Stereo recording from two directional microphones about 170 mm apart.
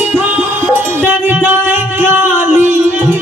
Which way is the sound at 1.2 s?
10° right (ahead or behind).